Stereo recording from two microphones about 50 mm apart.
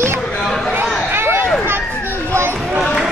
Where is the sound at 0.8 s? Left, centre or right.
Right.